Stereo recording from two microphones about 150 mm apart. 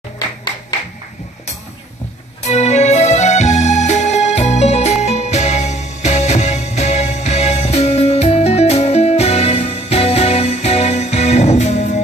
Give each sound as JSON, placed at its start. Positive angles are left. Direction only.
{"t": 2.4, "sound": "music", "side_deg": 45}